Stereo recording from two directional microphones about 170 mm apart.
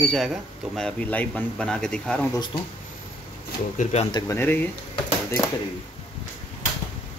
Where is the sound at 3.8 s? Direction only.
40° left (ahead or behind).